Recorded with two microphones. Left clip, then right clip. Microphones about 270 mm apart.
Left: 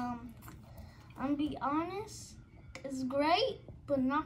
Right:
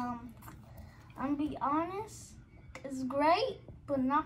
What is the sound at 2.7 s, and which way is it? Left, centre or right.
Speech, centre.